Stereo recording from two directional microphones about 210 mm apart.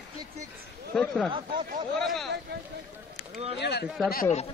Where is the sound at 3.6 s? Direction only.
50° left (ahead or behind).